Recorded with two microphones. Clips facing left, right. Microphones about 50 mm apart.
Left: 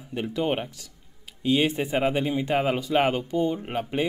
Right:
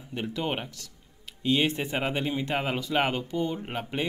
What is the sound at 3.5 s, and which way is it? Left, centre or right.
Speech, centre.